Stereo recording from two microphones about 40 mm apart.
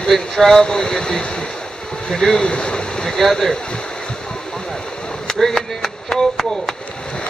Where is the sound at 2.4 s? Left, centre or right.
Left.